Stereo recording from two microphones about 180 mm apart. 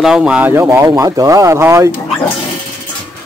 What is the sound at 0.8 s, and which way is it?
Speech, 20° right (ahead or behind).